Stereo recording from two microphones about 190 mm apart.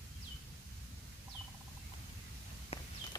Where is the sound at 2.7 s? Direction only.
30° left (ahead or behind).